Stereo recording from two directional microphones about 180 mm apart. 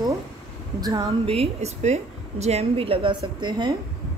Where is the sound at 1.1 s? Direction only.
35° right (ahead or behind).